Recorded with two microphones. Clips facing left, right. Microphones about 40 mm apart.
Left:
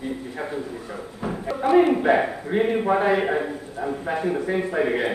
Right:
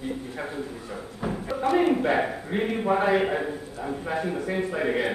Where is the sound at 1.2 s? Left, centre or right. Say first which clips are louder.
Left 3 dB; centre.